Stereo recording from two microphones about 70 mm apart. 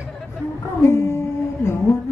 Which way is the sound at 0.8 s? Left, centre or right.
Left.